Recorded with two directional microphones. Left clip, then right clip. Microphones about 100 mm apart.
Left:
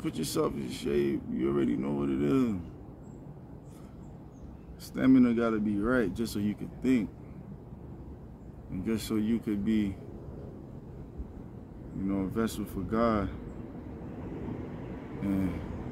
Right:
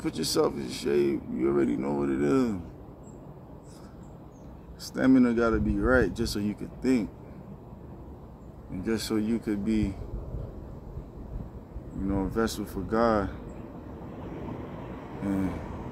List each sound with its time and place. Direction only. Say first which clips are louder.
0.0 s speech: right 5 dB; 15° left (ahead or behind)
4.8 s speech: right 2 dB; 15° left (ahead or behind)
8.8 s speech: right 3 dB; 15° left (ahead or behind)
12.1 s speech: right 4 dB; 20° left (ahead or behind)
15.2 s speech: right 2 dB; 15° left (ahead or behind)